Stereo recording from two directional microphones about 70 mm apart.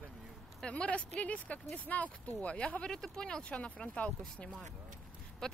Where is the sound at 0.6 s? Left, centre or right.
Centre.